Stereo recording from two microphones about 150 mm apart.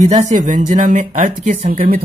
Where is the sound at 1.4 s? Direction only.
75° right (ahead or behind).